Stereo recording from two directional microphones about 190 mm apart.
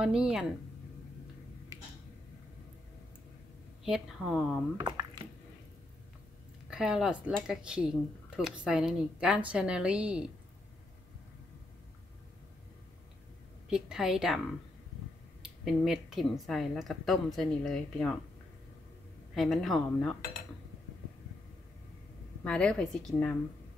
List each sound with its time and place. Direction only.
0.0 s a woman's voice: 5° right (ahead or behind)
3.8 s a woman's voice: centre (ahead or behind)
4.7 s squish: 20° right (ahead or behind)
6.7 s a woman's voice: 5° right (ahead or behind)
13.7 s a woman's voice: 5° right (ahead or behind)
15.6 s a woman's voice: centre (ahead or behind)
19.3 s a woman's voice: centre (ahead or behind)
22.4 s a woman's voice: 5° left (ahead or behind)